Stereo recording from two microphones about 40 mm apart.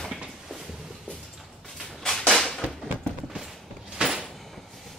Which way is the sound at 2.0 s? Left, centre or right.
Centre.